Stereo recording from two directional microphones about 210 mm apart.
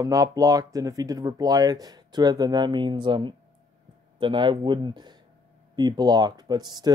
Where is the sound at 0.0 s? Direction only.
15° right (ahead or behind).